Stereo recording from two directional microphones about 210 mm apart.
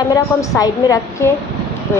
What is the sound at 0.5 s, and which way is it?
Speech, 15° left (ahead or behind).